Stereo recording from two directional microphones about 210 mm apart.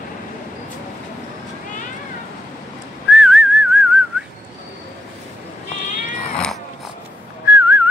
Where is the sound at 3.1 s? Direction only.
5° right (ahead or behind).